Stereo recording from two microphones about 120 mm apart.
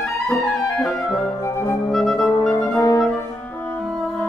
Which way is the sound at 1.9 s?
5° left (ahead or behind).